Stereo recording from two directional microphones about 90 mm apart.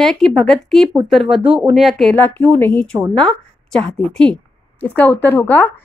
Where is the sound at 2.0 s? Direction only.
20° left (ahead or behind).